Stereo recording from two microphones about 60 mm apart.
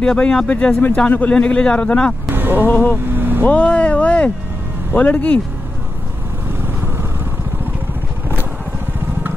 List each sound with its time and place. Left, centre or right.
0.0 s a man's voice: centre
2.3 s a sound: right
2.7 s speech: left
3.2 s vehicle: right
3.4 s speech: left
6.6 s vehicle: right